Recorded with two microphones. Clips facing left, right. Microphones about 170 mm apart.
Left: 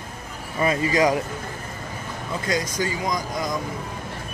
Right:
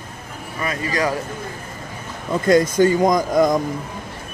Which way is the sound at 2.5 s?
55° right (ahead or behind).